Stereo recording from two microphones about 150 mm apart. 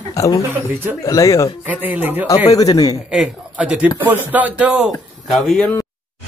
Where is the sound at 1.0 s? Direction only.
20° left (ahead or behind).